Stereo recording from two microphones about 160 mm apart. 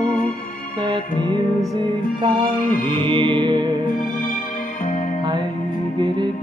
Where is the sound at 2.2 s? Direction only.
30° right (ahead or behind).